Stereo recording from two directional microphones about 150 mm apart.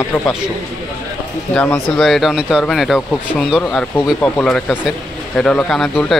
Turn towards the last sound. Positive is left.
turn(degrees=0)  # may be behind; listen again after turning